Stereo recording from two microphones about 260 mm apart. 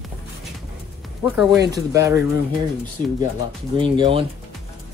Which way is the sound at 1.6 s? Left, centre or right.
Centre.